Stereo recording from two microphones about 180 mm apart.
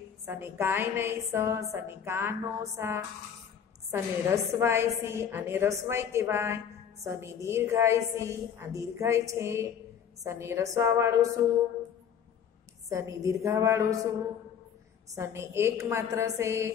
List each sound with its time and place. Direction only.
0.2 s a woman's voice: 15° right (ahead or behind)
12.9 s a woman's voice: 15° right (ahead or behind)
15.1 s a woman's voice: 15° right (ahead or behind)